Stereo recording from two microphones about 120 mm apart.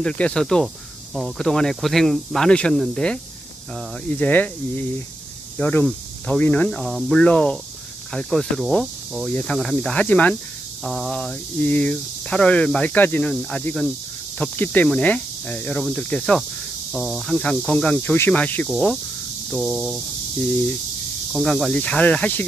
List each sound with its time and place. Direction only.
0.0 s speech: 10° left (ahead or behind)
6.7 s speech: centre (ahead or behind)
10.8 s speech: centre (ahead or behind)
11.6 s speech: 10° left (ahead or behind)
18.7 s speech: centre (ahead or behind)
21.3 s speech: centre (ahead or behind)